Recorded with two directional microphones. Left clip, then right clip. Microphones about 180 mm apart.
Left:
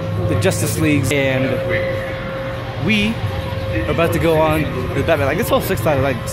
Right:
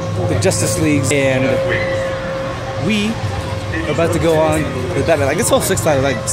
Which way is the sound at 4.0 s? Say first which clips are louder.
Right 1 dB; 10° right (ahead or behind).